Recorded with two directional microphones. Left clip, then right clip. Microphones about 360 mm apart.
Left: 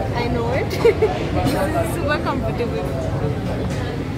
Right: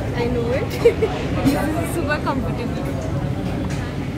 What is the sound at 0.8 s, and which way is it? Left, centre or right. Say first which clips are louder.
Speech: even; centre.